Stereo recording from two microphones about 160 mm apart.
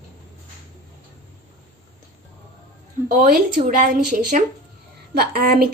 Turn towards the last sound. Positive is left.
turn(degrees=-75)  # may be behind; listen again after turning